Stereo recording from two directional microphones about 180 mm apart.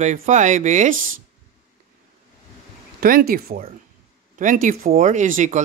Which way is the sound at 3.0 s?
55° right (ahead or behind).